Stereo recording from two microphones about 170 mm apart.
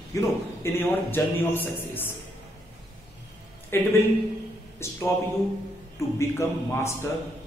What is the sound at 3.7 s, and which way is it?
A man's voice, 15° left (ahead or behind).